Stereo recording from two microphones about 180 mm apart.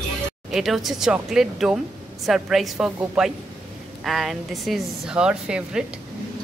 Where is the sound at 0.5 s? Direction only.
Centre (ahead or behind).